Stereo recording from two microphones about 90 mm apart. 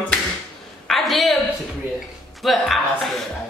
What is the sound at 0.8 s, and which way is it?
Speech, centre (ahead or behind).